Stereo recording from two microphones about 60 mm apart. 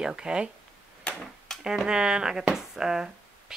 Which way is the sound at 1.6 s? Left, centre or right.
Centre.